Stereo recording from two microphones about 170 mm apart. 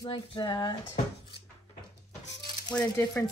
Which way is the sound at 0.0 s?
25° left (ahead or behind).